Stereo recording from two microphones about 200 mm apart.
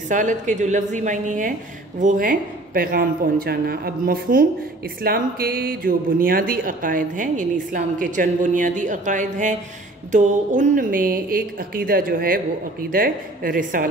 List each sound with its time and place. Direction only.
0.1 s a woman's voice: 40° right (ahead or behind)